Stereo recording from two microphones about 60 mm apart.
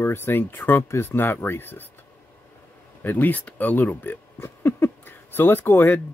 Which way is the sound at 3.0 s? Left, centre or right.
Left.